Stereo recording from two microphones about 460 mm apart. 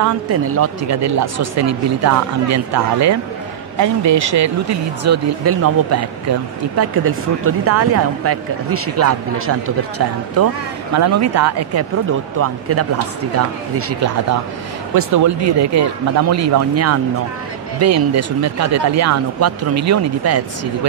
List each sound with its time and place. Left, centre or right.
0.0 s a man's voice: right